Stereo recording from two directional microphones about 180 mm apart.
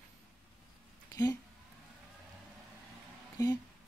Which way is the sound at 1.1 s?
20° left (ahead or behind).